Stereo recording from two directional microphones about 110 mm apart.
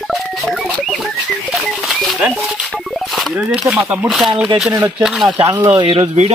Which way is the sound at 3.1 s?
Centre (ahead or behind).